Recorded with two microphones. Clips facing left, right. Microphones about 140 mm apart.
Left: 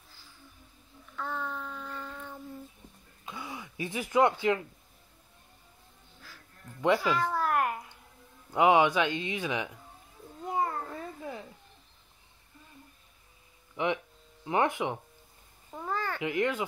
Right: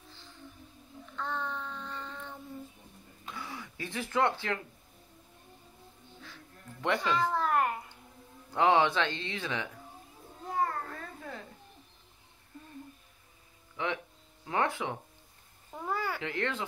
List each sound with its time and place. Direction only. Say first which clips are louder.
0.1 s music: right 2 dB; 5° left (ahead or behind)
1.1 s child singing: even; 5° left (ahead or behind)
3.3 s a sound: left 1 dB; 20° left (ahead or behind)
7.0 s speech: left 1 dB; 5° left (ahead or behind)
7.3 s a sound: even; 5° left (ahead or behind)
8.5 s speech: left 3 dB; 10° left (ahead or behind)
10.6 s cat: right 1 dB; 15° left (ahead or behind)
13.8 s speech: left 4 dB; 20° left (ahead or behind)
15.7 s a sound: even; 10° right (ahead or behind)
16.2 s speech: left 5 dB; 15° left (ahead or behind)